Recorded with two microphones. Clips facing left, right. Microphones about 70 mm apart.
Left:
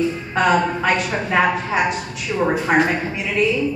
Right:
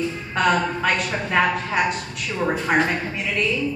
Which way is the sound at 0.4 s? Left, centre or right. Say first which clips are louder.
Left 3 dB; centre.